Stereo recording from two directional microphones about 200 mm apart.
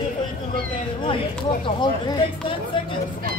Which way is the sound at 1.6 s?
25° left (ahead or behind).